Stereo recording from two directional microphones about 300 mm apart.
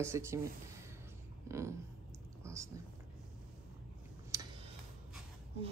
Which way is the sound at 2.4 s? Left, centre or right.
Centre.